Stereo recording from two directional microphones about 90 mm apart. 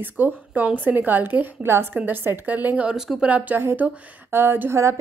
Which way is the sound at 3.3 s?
15° right (ahead or behind).